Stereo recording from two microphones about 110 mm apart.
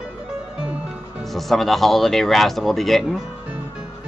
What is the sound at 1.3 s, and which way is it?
Speech, centre (ahead or behind).